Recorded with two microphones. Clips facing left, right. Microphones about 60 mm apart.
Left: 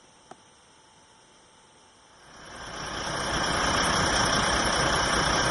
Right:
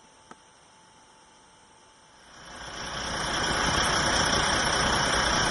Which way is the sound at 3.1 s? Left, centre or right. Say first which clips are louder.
Even; centre.